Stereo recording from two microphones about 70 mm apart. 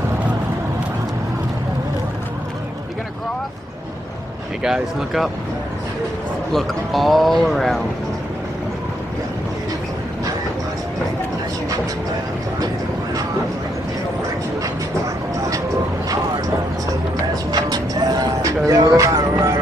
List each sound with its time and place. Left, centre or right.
4.6 s speech: centre
6.5 s speech: centre
17.5 s music: right
18.7 s music: right